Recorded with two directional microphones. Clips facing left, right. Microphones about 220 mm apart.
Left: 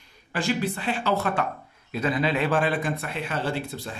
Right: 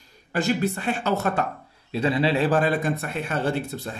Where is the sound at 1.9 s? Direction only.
30° right (ahead or behind).